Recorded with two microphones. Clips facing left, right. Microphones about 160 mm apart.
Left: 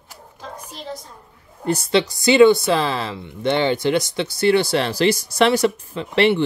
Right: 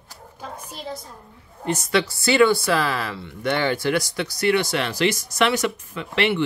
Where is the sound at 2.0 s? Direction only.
20° left (ahead or behind); by 6.5 s 35° left (ahead or behind).